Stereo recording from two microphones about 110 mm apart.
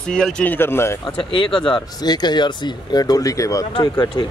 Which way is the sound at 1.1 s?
50° left (ahead or behind).